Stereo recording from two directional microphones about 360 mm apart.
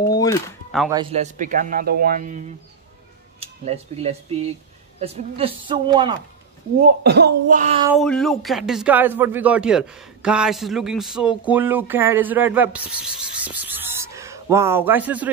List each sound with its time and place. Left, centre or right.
0.1 s speech: centre
0.9 s a man's voice: centre
7.0 s a man's voice: right
7.9 s speech: centre